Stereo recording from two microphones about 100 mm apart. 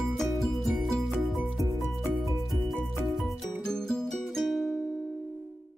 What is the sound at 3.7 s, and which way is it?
Music, 5° left (ahead or behind).